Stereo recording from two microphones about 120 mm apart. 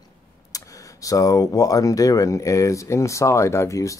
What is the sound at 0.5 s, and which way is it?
Speech, 30° left (ahead or behind).